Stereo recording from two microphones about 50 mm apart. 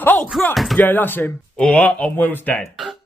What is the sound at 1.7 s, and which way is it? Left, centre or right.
Speech, left.